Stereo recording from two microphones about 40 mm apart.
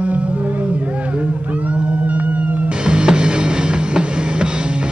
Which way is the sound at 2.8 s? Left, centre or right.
Right.